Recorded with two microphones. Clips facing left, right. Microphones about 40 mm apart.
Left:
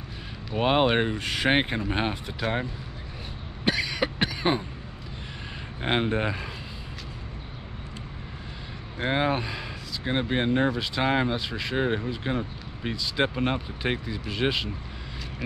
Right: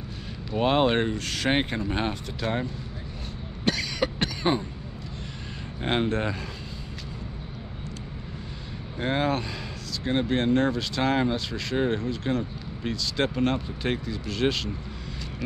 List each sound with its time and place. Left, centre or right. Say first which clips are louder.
0.5 s speech: even; centre
3.6 s cough: left 1 dB; centre
5.8 s speech: even; centre
9.0 s speech: even; centre